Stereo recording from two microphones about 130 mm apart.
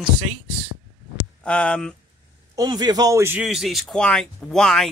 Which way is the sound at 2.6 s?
30° right (ahead or behind).